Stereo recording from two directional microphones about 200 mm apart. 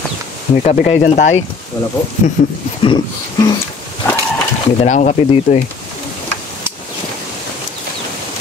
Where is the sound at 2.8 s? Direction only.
30° left (ahead or behind).